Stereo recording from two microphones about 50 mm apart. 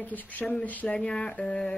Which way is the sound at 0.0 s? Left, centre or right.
Left.